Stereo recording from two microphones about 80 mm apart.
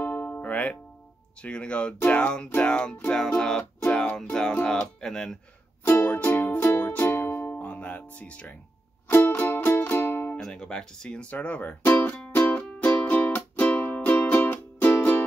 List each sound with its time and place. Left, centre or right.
0.0 s music: left
1.4 s speech: centre
5.9 s music: centre
10.4 s speech: centre
12.4 s music: centre